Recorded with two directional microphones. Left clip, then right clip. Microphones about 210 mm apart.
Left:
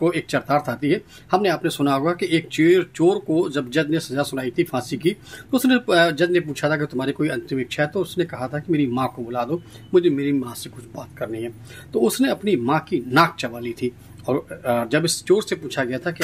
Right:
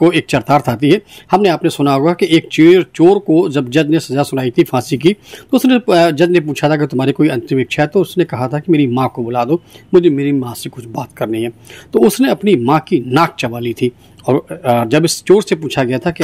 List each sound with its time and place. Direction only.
0.0 s speech: 35° right (ahead or behind)